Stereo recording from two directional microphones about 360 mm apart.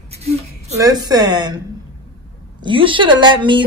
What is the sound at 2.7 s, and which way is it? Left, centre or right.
Speech, centre.